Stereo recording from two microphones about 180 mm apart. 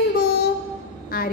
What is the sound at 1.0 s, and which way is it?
Speech, 55° left (ahead or behind).